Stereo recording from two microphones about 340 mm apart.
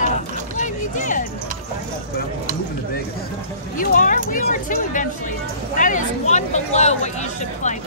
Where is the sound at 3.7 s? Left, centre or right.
Left.